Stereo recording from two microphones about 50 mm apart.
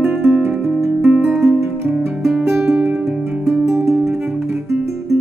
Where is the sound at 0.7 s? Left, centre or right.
Centre.